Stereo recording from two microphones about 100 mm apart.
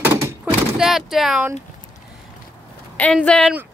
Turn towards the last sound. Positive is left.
turn(degrees=10)  # may be behind; listen again after turning